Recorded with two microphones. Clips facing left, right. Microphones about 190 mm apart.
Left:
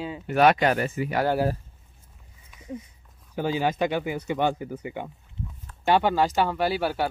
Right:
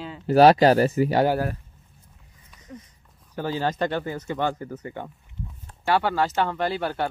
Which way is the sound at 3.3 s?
15° left (ahead or behind).